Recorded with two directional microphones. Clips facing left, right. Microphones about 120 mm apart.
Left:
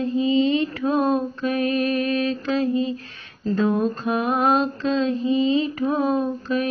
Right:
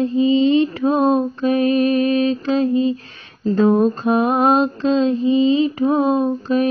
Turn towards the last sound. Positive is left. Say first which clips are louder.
# right 6 dB
turn(degrees=-30)  # may be behind; listen again after turning